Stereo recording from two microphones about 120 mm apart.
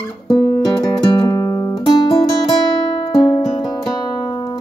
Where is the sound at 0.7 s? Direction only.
30° left (ahead or behind).